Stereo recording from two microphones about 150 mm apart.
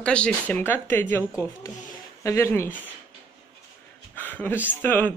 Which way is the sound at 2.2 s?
15° left (ahead or behind).